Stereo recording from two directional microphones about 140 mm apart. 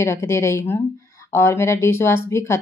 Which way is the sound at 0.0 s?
20° left (ahead or behind).